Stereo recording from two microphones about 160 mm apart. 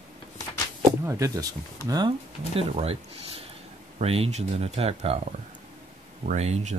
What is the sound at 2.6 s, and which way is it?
Speech, 40° right (ahead or behind).